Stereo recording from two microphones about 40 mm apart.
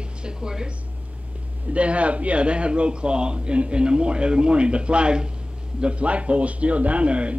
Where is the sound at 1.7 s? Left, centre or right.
Right.